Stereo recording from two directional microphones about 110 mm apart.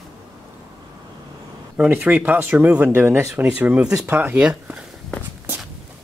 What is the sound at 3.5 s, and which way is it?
Speech, 15° right (ahead or behind).